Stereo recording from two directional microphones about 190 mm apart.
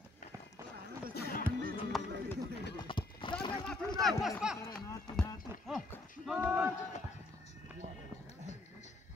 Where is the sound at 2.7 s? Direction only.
25° left (ahead or behind).